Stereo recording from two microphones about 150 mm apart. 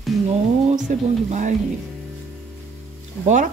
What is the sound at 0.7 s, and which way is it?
Speech, 55° right (ahead or behind).